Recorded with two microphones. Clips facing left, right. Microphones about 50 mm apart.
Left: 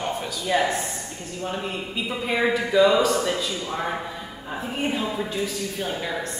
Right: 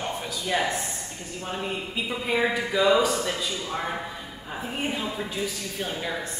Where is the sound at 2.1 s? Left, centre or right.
Centre.